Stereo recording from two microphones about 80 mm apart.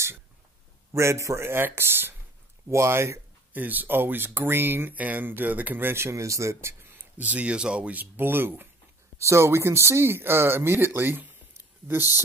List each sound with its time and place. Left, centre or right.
0.9 s speech: right
7.2 s speech: centre